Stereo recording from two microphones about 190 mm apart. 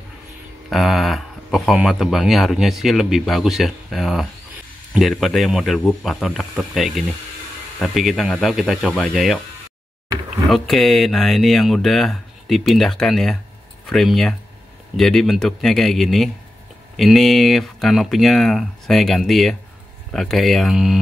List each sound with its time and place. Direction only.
0.7 s speech: centre (ahead or behind)
10.4 s speech: centre (ahead or behind)